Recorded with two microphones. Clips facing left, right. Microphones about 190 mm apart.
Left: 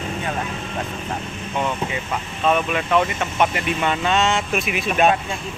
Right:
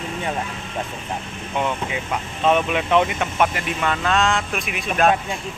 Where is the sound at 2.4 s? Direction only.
20° right (ahead or behind).